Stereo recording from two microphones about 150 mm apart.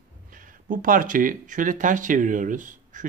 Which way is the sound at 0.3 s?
60° right (ahead or behind).